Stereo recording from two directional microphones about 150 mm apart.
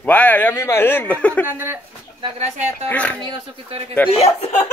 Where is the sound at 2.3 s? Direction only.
45° right (ahead or behind).